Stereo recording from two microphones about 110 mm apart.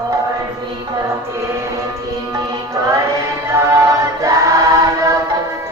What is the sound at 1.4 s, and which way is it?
Music, 25° right (ahead or behind).